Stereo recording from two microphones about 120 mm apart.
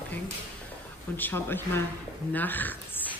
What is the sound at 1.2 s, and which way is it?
Speech, 15° left (ahead or behind).